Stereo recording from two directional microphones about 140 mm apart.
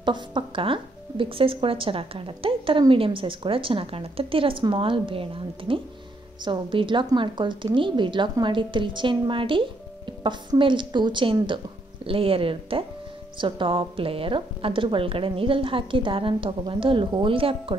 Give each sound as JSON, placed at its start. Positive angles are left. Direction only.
{"t": 0.0, "sound": "a woman's voice", "side_deg": -35}